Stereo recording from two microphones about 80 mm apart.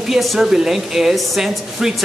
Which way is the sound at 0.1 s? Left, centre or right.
Centre.